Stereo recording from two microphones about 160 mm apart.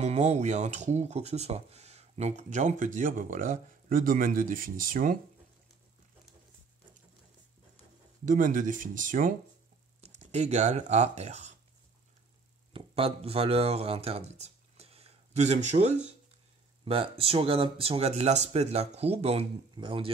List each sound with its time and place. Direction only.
0.0 s speech: 45° right (ahead or behind); by 5.2 s 60° right (ahead or behind)
8.3 s speech: 55° right (ahead or behind)
10.0 s speech: 45° right (ahead or behind)
12.7 s speech: 35° right (ahead or behind)